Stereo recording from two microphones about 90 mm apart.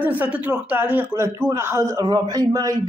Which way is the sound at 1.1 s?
30° right (ahead or behind).